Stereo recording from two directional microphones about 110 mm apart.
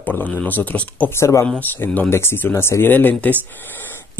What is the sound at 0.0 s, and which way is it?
Speech, 15° left (ahead or behind).